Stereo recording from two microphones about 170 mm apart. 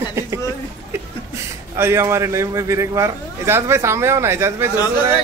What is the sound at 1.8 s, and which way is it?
A man's voice, 15° right (ahead or behind).